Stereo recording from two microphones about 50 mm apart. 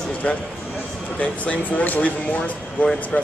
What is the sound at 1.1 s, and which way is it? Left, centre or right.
Speech, left.